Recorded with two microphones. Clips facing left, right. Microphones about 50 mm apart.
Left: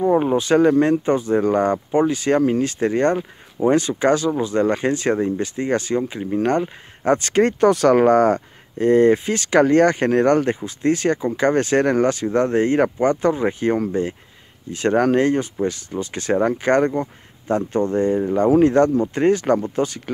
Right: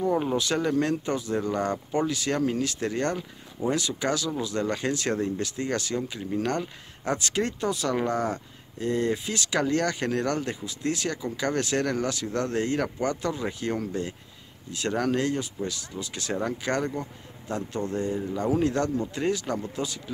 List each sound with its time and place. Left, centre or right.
0.0 s speech: left